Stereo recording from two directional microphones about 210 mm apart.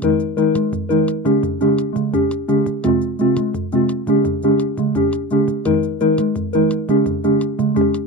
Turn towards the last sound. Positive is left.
turn(degrees=5)  # may be behind; listen again after turning